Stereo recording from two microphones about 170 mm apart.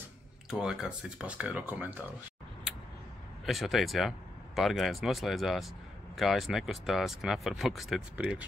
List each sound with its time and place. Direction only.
0.5 s speech: 5° right (ahead or behind)
3.4 s speech: centre (ahead or behind)